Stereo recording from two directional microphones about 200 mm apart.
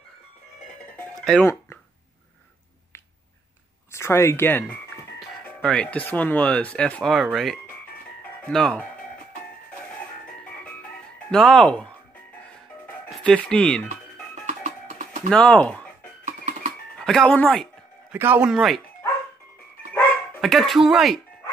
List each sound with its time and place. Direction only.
0.9 s music: 5° left (ahead or behind)
3.9 s speech: 15° left (ahead or behind)
8.2 s music: 5° left (ahead or behind)
11.2 s speech: 5° left (ahead or behind)
13.2 s speech: 5° left (ahead or behind)
15.2 s speech: 5° left (ahead or behind)
16.3 s music: 35° right (ahead or behind)
16.9 s speech: 5° left (ahead or behind)
18.1 s speech: 10° right (ahead or behind)
18.5 s speech: centre (ahead or behind)
19.9 s dog: centre (ahead or behind)